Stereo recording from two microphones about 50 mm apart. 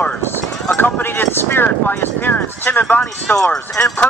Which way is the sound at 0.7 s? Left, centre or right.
Left.